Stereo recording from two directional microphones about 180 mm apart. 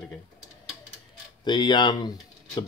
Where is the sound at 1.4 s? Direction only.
25° left (ahead or behind).